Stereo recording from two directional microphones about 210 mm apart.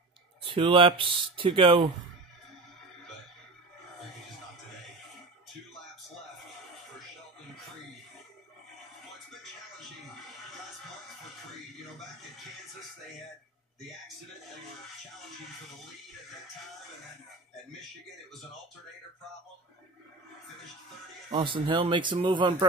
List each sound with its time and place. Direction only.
0.4 s speech: 25° right (ahead or behind)
21.3 s speech: 25° right (ahead or behind)